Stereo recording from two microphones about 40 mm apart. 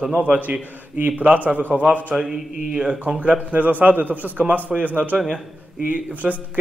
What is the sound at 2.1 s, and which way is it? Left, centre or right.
Speech, centre.